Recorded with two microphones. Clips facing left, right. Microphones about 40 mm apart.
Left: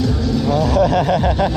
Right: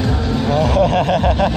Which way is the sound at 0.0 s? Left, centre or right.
Right.